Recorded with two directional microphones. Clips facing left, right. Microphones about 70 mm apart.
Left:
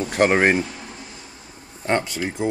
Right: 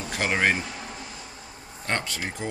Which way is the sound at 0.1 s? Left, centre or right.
Left.